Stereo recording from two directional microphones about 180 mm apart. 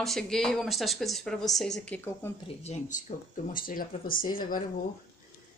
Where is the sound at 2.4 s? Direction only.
40° left (ahead or behind).